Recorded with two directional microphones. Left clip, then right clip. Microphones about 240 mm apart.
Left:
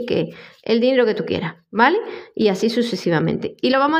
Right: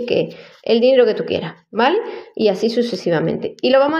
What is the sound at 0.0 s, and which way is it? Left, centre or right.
A woman's voice, left.